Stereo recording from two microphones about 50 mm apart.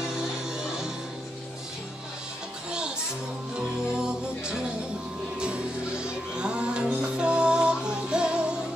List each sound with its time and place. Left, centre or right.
0.0 s music: centre
3.8 s music: centre